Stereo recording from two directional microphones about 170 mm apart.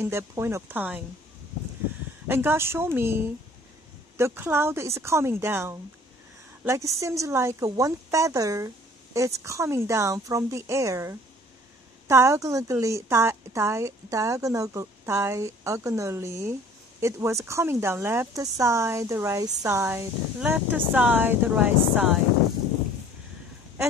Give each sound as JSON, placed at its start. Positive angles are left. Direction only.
{"t": 0.0, "sound": "speech", "side_deg": -15}
{"t": 2.2, "sound": "speech", "side_deg": -15}